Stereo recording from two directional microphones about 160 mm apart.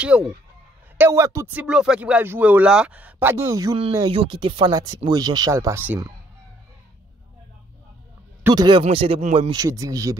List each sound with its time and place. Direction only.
0.1 s speech: 5° right (ahead or behind)
4.0 s speech: 30° right (ahead or behind)
8.5 s speech: 25° right (ahead or behind)
9.6 s speech: 20° right (ahead or behind)